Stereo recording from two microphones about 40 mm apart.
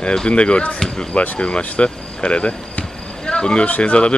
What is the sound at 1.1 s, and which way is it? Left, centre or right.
Speech, left.